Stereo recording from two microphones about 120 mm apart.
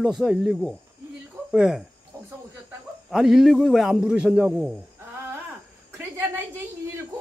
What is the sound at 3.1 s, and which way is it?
A man's voice, 5° right (ahead or behind).